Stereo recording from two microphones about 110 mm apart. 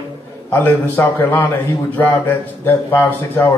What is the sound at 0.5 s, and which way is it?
A man's voice, 20° left (ahead or behind).